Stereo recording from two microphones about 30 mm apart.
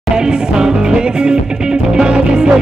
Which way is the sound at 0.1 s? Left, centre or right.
Right.